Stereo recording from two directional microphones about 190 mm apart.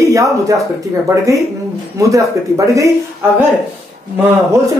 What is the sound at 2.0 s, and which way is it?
Speech, 15° right (ahead or behind).